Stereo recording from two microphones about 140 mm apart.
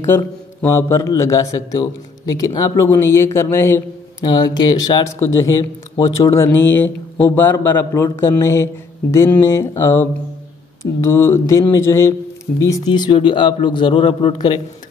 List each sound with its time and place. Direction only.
0.0 s speech: 20° left (ahead or behind); by 14.6 s 35° left (ahead or behind)